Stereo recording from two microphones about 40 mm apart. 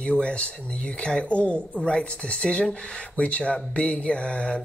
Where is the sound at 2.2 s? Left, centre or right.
Left.